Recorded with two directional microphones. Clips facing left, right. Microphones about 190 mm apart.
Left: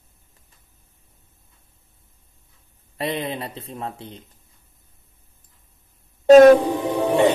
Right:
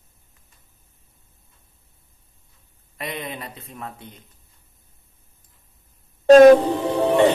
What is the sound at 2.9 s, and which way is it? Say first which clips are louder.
Speech: left 6 dB; 30° left (ahead or behind).